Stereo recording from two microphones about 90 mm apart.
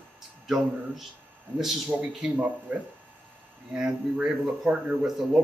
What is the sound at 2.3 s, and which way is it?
Speech, 20° right (ahead or behind).